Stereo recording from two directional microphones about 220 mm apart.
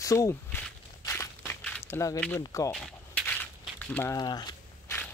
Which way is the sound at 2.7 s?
5° left (ahead or behind).